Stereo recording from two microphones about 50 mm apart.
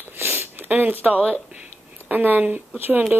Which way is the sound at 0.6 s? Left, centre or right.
Right.